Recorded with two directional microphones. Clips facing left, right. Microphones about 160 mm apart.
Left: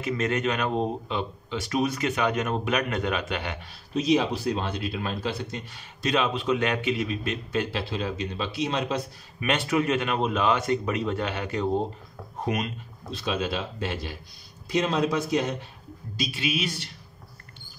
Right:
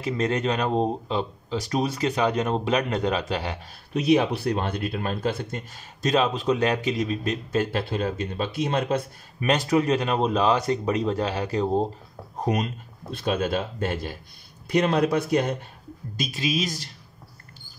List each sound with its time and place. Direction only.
0.0 s speech: 35° right (ahead or behind)
3.9 s speech: 60° right (ahead or behind)
9.4 s speech: 35° right (ahead or behind)
13.1 s speech: 50° right (ahead or behind)
14.7 s speech: 60° right (ahead or behind)
16.2 s speech: 40° right (ahead or behind)